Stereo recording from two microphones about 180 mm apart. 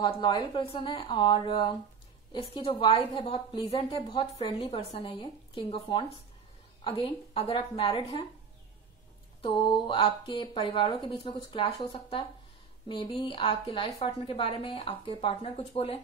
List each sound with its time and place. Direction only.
0.0 s a woman's voice: 25° left (ahead or behind)
9.4 s a woman's voice: 30° left (ahead or behind)